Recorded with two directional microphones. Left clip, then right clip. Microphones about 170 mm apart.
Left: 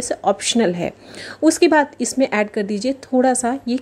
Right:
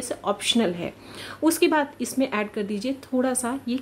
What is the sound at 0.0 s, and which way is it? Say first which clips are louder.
A woman's voice: left 7 dB; 25° left (ahead or behind).